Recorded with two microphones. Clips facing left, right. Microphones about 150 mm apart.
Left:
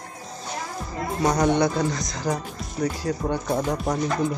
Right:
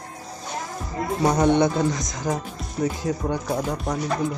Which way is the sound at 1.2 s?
5° right (ahead or behind).